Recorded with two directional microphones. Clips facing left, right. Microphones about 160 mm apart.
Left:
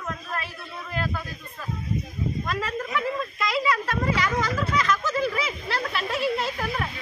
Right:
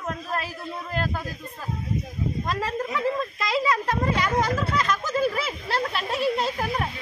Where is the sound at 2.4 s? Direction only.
35° right (ahead or behind).